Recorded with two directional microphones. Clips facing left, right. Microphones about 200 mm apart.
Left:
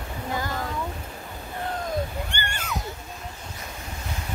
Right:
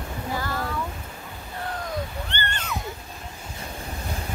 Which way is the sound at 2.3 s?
10° left (ahead or behind).